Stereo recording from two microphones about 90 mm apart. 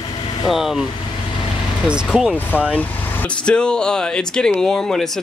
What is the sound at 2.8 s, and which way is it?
Speech, 15° left (ahead or behind).